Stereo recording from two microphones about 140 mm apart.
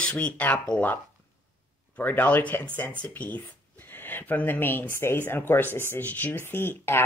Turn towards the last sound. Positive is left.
turn(degrees=15)  # may be behind; listen again after turning